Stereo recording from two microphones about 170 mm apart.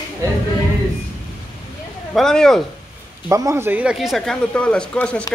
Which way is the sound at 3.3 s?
15° right (ahead or behind).